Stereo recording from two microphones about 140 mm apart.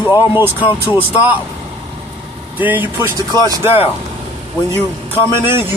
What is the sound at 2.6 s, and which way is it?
Speech, 10° right (ahead or behind).